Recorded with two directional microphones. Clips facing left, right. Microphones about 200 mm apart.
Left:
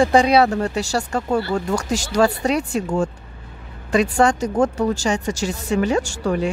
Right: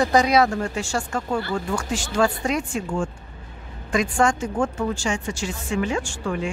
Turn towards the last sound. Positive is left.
turn(degrees=40)  # may be behind; listen again after turning